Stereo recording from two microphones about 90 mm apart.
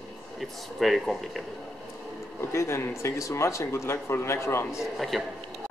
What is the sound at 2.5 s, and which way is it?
Speech, 30° left (ahead or behind).